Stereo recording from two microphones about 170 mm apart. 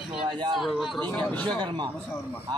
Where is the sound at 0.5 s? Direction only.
Centre (ahead or behind).